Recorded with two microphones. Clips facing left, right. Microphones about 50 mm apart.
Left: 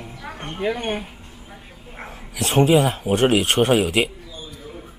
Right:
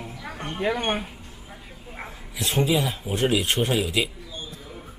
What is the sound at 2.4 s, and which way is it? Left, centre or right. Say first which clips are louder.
Speech: left 7 dB; left.